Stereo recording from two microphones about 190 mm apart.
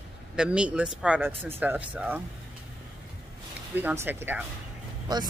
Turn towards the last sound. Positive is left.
turn(degrees=-20)  # may be behind; listen again after turning